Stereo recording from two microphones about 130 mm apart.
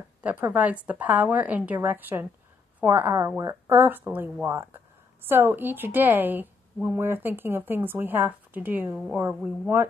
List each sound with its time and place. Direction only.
0.2 s a woman's voice: 15° right (ahead or behind)